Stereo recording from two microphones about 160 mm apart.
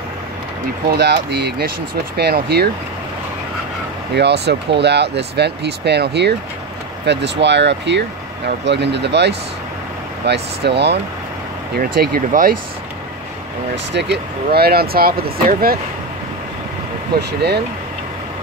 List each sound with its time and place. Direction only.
0.9 s speech: 90° right
4.1 s speech: 90° right
11.7 s speech: 75° right (ahead or behind)
13.9 s speech: 90° right; by 15.8 s 70° right (ahead or behind)